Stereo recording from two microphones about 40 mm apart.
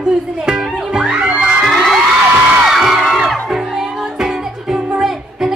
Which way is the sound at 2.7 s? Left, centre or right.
Centre.